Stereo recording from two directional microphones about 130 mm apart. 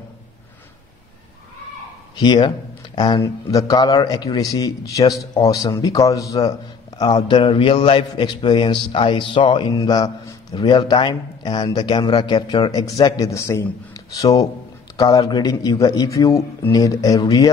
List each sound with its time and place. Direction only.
2.1 s a man's voice: 35° left (ahead or behind)